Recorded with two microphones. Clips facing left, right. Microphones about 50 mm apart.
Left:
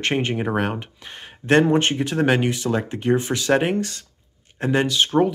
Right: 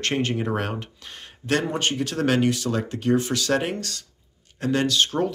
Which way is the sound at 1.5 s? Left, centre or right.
Left.